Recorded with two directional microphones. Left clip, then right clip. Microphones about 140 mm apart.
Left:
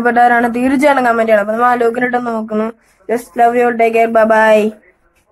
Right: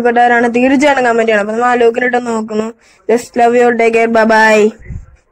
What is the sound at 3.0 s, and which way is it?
Speech, 25° right (ahead or behind).